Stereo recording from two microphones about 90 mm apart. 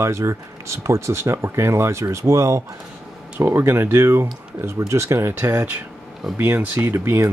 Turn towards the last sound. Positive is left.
turn(degrees=-30)  # may be behind; listen again after turning